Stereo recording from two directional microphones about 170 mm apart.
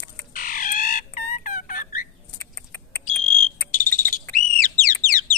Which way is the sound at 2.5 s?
10° left (ahead or behind).